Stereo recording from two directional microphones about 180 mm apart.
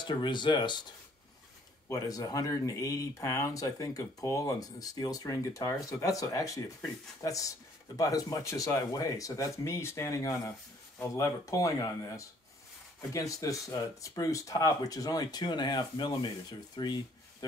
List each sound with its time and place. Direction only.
0.0 s speech: 25° left (ahead or behind)
1.9 s speech: 20° left (ahead or behind)